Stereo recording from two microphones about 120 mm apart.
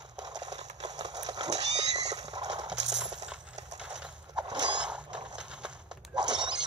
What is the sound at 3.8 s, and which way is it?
Clip-clop, 5° right (ahead or behind).